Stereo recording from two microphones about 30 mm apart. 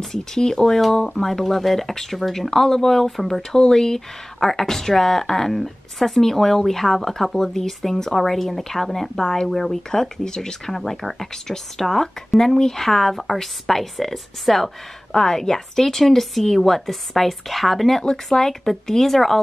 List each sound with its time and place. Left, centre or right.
0.0 s speech: centre
2.5 s speech: centre
3.5 s speech: left
4.4 s speech: centre
10.7 s speech: centre
15.1 s speech: centre
18.0 s speech: centre